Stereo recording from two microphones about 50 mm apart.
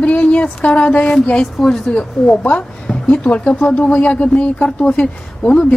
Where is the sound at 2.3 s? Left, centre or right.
Left.